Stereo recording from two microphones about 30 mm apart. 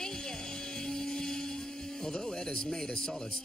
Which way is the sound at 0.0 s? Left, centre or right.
Left.